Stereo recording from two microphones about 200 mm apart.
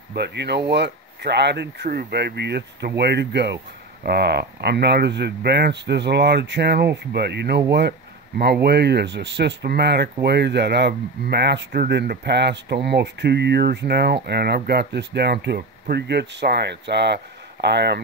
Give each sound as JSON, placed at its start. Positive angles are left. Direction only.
{"t": 0.1, "sound": "speech", "side_deg": -55}
{"t": 8.6, "sound": "speech", "side_deg": -55}